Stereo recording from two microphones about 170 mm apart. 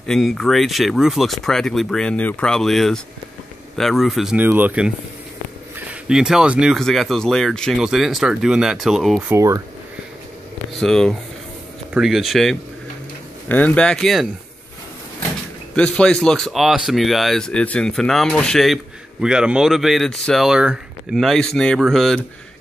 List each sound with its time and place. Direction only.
0.0 s speech: 5° left (ahead or behind)
9.3 s speech: 20° right (ahead or behind)
10.8 s speech: 5° left (ahead or behind)
15.7 s speech: 5° left (ahead or behind)